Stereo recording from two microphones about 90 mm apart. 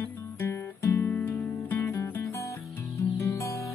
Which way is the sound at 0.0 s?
30° left (ahead or behind).